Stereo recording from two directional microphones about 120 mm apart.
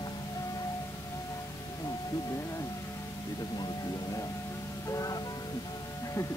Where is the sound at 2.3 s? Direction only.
25° left (ahead or behind).